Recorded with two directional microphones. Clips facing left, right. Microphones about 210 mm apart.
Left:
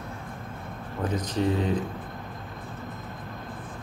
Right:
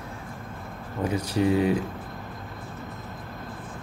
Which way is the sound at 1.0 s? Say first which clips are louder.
Right 2 dB; 10° right (ahead or behind).